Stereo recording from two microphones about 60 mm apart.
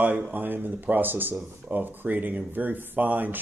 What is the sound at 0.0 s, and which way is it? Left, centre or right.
Speech, right.